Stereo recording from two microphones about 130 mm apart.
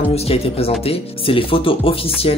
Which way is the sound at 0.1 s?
50° left (ahead or behind).